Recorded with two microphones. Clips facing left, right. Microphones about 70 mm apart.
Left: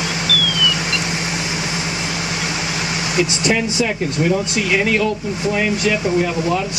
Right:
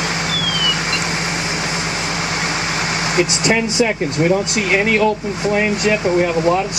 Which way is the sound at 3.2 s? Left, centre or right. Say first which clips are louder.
Right 1 dB; right.